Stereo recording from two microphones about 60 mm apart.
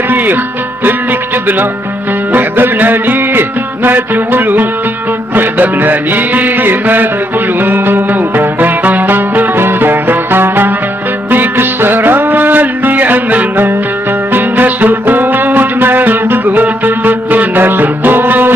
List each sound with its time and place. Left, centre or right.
0.1 s speech: right
0.8 s music: right